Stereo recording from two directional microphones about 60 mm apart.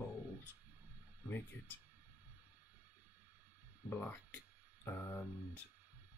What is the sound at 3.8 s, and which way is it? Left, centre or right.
Speech, left.